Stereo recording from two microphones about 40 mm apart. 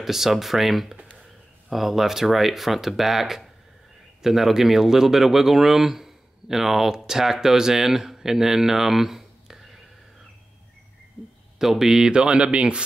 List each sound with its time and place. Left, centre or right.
0.0 s speech: centre
11.5 s speech: centre; by 12.8 s right